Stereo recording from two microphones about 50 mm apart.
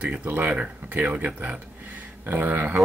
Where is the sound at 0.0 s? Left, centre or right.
Right.